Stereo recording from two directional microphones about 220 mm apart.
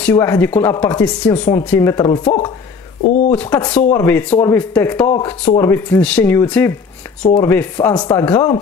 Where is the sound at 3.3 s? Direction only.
10° left (ahead or behind).